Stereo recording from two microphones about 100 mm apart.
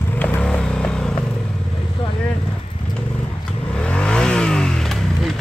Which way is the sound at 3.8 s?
10° left (ahead or behind).